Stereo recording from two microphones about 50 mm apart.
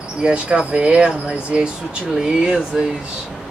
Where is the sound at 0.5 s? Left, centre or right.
Centre.